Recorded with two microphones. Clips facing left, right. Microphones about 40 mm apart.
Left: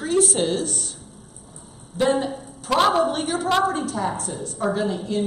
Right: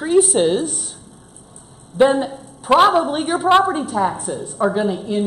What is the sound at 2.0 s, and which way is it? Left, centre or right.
Speech, centre.